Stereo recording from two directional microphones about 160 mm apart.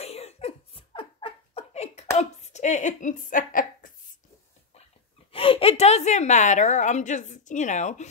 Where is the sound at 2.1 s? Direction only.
45° left (ahead or behind).